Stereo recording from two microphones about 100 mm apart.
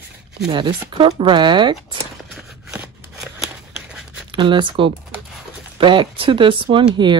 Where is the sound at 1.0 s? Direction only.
65° right (ahead or behind).